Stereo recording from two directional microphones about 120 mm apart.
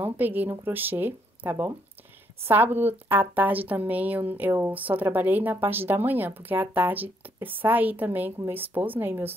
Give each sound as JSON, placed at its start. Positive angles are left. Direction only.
{"t": 0.0, "sound": "a woman's voice", "side_deg": -15}